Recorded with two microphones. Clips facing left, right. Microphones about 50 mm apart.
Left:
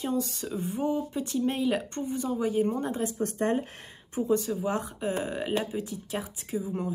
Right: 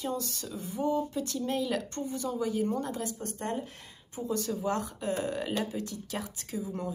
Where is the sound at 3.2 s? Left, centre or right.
Left.